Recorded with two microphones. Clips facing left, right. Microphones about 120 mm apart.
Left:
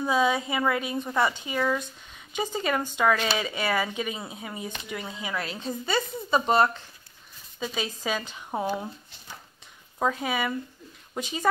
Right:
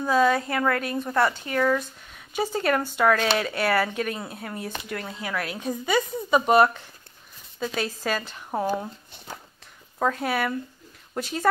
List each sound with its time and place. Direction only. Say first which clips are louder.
0.0 s speech: right 3 dB; 5° left (ahead or behind)
2.3 s speech: right 3 dB; 5° right (ahead or behind)
5.4 s speech: right 3 dB; 10° right (ahead or behind)
7.5 s speech: right 3 dB; 5° left (ahead or behind)
9.9 s speech: right 2 dB; 5° left (ahead or behind)